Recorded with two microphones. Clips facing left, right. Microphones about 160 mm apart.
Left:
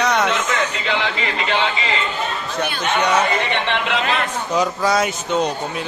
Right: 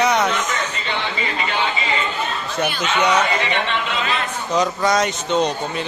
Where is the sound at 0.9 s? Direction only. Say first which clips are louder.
Left 2 dB; 85° left.